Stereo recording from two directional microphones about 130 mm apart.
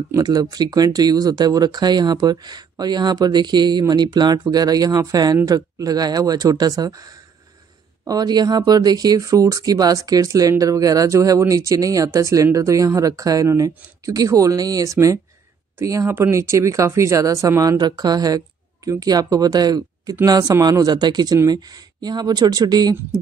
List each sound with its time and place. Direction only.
0.1 s speech: 30° right (ahead or behind)